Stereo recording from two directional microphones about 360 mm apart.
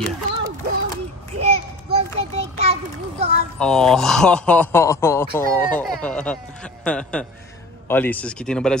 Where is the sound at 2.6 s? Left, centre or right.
Centre.